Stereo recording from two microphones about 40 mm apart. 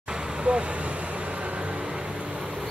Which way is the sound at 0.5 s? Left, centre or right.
Right.